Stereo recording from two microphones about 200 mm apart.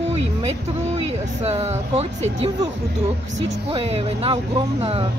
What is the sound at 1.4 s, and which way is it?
Speech, 30° right (ahead or behind).